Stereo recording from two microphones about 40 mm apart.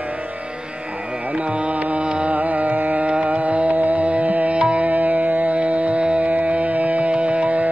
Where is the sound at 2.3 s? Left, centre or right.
Right.